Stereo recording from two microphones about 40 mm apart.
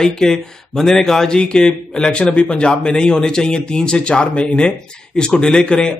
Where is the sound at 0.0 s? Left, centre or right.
Centre.